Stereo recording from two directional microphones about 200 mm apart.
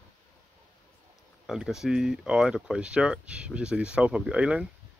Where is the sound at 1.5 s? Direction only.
Centre (ahead or behind).